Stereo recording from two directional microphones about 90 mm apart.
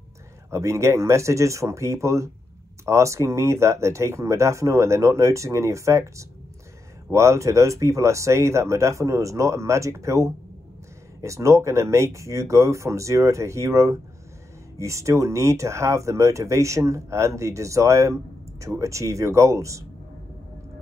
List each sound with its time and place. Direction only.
0.5 s speech: 35° right (ahead or behind)